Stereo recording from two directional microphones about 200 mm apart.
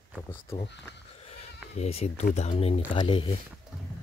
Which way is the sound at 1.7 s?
30° left (ahead or behind).